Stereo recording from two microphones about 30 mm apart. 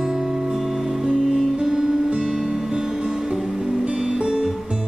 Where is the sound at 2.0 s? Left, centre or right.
Right.